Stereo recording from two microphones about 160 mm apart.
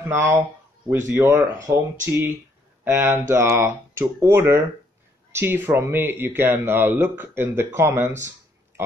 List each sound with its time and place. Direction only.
0.1 s speech: 15° right (ahead or behind)